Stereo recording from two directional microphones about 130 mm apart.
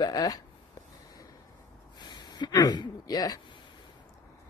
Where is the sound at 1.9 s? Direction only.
35° left (ahead or behind).